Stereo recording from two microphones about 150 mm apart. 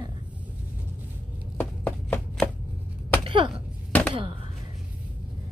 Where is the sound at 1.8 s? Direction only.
10° left (ahead or behind).